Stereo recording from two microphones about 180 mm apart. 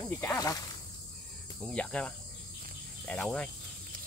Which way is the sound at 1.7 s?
5° left (ahead or behind).